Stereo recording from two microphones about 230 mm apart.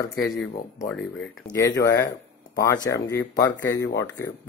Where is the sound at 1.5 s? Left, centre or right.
Centre.